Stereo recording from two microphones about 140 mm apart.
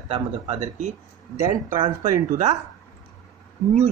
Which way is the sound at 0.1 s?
55° right (ahead or behind).